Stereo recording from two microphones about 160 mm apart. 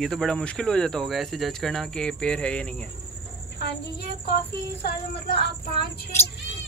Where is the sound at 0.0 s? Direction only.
5° left (ahead or behind).